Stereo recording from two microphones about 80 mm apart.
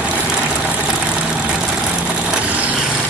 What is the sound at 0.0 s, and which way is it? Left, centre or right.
Vehicle, centre.